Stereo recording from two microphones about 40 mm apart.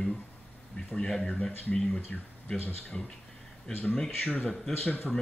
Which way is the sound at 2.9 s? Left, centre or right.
Left.